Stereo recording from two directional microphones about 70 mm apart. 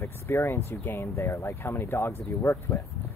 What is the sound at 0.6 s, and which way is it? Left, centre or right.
Speech, left.